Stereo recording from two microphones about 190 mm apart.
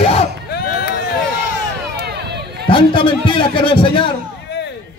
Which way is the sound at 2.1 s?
60° right (ahead or behind).